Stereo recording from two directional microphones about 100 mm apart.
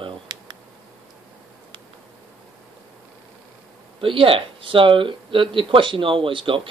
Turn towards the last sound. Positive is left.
turn(degrees=-60)  # may be behind; listen again after turning